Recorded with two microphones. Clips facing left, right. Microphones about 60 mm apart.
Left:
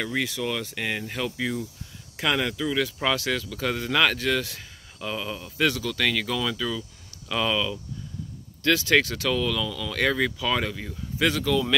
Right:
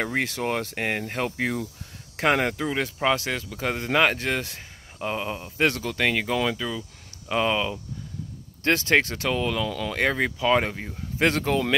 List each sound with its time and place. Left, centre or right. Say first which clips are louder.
0.0 s speech: right 2 dB; right
9.7 s speech: right 3 dB; right
9.9 s speech: left 1 dB; right